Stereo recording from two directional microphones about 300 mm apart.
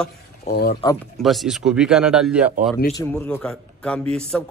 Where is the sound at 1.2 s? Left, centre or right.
Centre.